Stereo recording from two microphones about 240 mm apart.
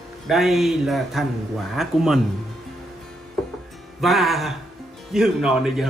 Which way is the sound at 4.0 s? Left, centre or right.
Centre.